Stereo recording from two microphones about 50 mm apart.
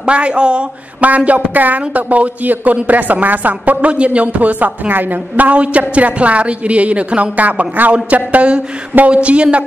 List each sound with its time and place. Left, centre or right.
0.0 s a man's voice: right